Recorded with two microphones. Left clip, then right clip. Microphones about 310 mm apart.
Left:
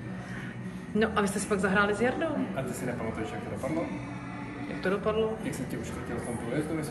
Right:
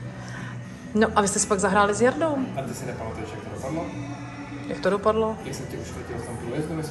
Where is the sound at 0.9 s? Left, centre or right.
Centre.